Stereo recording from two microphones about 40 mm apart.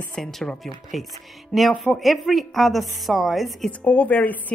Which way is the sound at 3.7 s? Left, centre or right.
Left.